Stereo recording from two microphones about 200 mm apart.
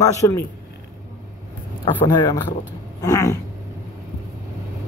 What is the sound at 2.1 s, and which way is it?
A man's voice, 20° left (ahead or behind).